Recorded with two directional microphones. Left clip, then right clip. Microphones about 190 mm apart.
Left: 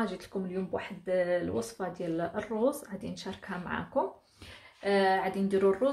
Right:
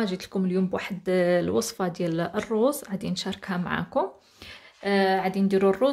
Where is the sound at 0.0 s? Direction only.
45° right (ahead or behind).